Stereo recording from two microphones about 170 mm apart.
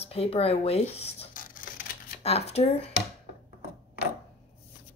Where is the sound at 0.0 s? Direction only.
35° left (ahead or behind).